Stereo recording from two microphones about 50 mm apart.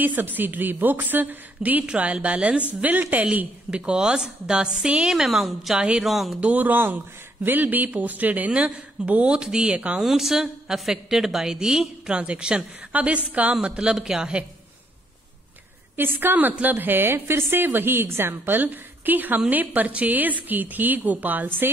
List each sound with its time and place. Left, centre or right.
0.0 s a woman's voice: right
3.3 s a woman's voice: right; by 5.8 s centre
5.8 s a woman's voice: centre
6.0 s speech: centre
6.4 s a woman's voice: right; by 11.9 s centre
12.1 s a woman's voice: right
16.0 s a woman's voice: right